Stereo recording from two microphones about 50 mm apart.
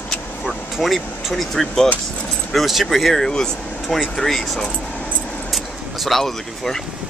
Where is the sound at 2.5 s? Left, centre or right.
Centre.